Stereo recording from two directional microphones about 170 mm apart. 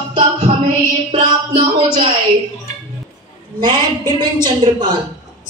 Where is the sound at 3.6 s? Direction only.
25° right (ahead or behind).